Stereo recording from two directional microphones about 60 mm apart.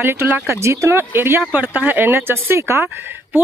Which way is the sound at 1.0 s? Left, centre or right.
Right.